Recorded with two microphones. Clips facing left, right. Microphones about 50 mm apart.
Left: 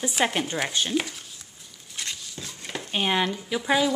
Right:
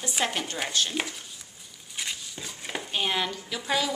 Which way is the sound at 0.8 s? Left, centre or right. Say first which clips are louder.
Right 2 dB; centre.